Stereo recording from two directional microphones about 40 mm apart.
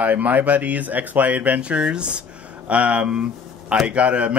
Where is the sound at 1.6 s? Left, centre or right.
Right.